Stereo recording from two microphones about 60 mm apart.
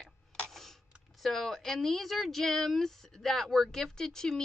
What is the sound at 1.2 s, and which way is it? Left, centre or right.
Speech, centre.